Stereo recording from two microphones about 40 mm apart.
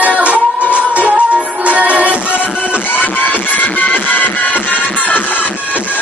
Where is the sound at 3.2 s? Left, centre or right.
Left.